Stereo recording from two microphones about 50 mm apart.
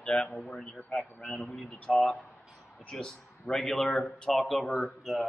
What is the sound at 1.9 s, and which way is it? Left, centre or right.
Speech, centre.